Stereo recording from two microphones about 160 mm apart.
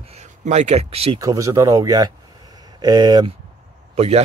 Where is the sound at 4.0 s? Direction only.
40° right (ahead or behind).